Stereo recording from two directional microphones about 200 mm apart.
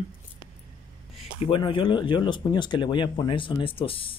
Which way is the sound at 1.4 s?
25° left (ahead or behind).